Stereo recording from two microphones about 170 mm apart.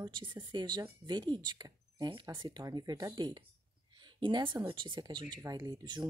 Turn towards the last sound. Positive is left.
turn(degrees=-25)  # may be behind; listen again after turning